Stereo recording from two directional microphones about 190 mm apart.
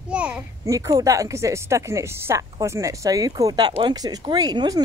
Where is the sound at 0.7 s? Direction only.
15° right (ahead or behind).